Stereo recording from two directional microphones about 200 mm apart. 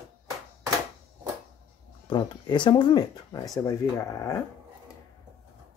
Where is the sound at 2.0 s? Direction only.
25° left (ahead or behind).